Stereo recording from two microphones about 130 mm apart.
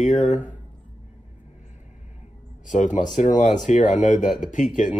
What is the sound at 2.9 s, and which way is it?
Mantra, 75° left (ahead or behind).